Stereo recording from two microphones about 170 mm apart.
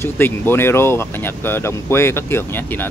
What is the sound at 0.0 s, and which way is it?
Speech, 15° left (ahead or behind).